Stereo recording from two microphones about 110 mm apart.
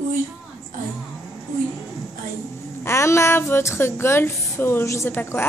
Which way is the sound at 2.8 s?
25° left (ahead or behind).